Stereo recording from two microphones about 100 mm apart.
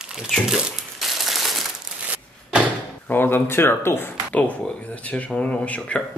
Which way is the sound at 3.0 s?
20° left (ahead or behind).